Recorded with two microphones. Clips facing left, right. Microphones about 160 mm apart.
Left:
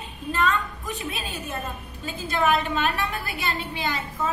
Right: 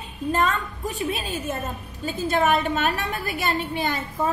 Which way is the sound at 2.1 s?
45° right (ahead or behind).